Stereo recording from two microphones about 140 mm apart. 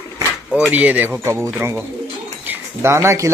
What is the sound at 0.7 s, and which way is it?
Speech, 10° right (ahead or behind).